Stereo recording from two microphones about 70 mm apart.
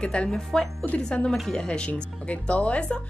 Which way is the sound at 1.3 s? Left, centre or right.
Centre.